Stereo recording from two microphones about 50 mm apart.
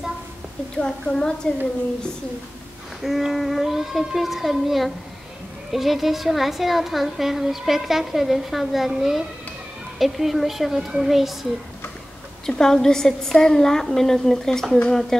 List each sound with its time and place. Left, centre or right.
0.7 s a woman's voice: centre
3.0 s a woman's voice: centre
12.4 s a woman's voice: centre